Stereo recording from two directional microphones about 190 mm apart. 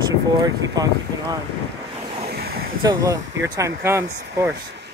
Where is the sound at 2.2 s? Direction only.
55° right (ahead or behind).